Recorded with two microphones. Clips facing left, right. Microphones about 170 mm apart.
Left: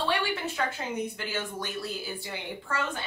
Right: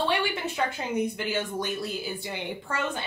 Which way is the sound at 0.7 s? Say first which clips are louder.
Right 4 dB; 20° right (ahead or behind).